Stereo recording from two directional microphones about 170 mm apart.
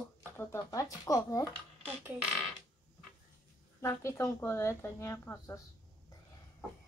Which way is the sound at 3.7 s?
15° left (ahead or behind).